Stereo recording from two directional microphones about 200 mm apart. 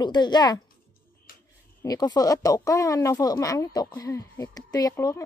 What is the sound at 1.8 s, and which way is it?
Speech, 20° left (ahead or behind).